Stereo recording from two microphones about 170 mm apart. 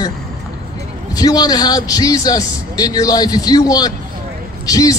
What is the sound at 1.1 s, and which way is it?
A man's voice, 20° left (ahead or behind).